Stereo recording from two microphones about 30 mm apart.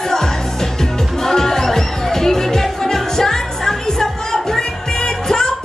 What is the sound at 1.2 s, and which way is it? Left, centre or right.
Music, centre.